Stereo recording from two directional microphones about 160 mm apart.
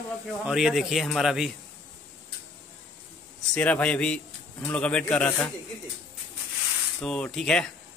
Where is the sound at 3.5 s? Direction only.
5° left (ahead or behind).